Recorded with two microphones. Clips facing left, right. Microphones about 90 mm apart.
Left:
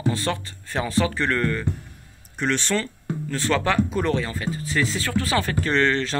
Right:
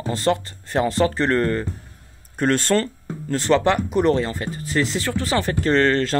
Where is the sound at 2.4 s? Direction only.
45° right (ahead or behind).